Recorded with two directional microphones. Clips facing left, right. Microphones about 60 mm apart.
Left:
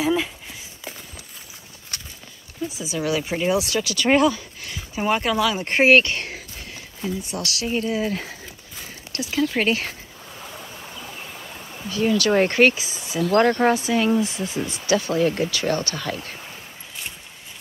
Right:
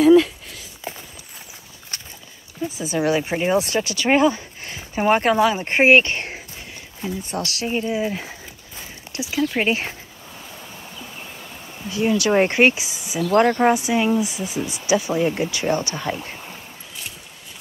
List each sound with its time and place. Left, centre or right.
0.0 s a sound: centre
2.8 s speech: right
4.0 s speech: centre
4.3 s speech: right
7.6 s a sound: centre
9.2 s speech: centre
9.7 s speech: right
11.9 s speech: centre